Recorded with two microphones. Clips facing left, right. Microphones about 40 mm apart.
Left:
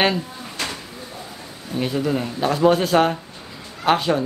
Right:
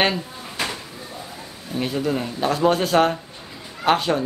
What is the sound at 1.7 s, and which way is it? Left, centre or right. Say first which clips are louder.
A man's voice: left 1 dB; centre.